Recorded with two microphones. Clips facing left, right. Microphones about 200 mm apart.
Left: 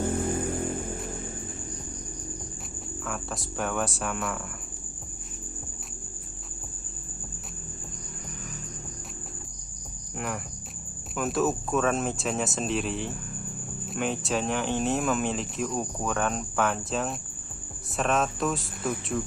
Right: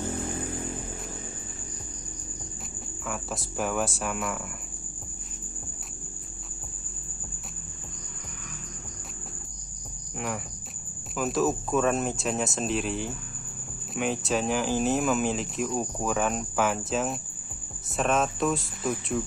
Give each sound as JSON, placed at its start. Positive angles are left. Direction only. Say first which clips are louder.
{"t": 0.0, "sound": "vehicle", "louder": "left 5 dB", "side_deg": 55}
{"t": 3.1, "sound": "speech", "louder": "right 1 dB", "side_deg": 0}
{"t": 10.1, "sound": "cricket", "louder": "even", "side_deg": 0}
{"t": 11.1, "sound": "speech", "louder": "even", "side_deg": 0}